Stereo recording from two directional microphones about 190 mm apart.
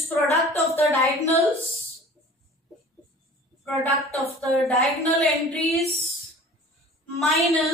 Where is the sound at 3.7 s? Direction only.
15° right (ahead or behind).